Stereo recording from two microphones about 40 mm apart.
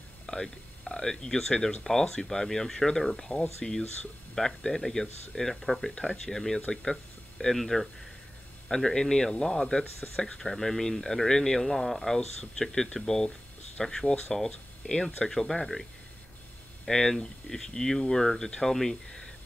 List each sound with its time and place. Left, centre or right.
0.3 s speech: centre